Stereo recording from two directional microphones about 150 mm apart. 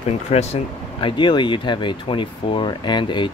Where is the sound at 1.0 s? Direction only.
30° left (ahead or behind).